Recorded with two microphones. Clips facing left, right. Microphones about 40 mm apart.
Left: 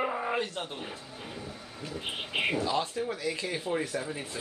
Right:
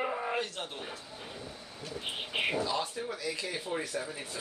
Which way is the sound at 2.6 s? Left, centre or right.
Left.